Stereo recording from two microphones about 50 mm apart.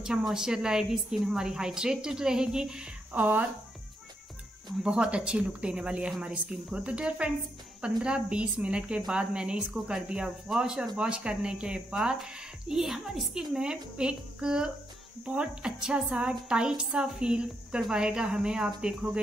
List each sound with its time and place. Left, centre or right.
0.2 s speech: centre
3.1 s speech: right
4.8 s speech: centre
10.8 s speech: right